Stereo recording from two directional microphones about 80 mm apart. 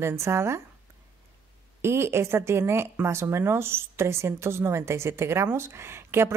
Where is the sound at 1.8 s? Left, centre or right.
Right.